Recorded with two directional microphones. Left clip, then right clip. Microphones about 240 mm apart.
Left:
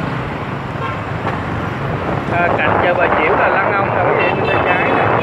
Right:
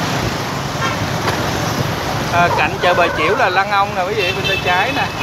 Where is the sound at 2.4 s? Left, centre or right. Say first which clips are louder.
Even; centre.